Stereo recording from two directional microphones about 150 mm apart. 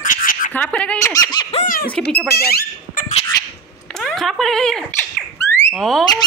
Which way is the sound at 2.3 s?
90° left.